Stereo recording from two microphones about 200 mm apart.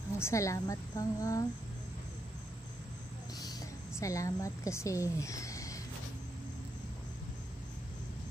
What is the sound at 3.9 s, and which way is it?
A woman's voice, 15° left (ahead or behind).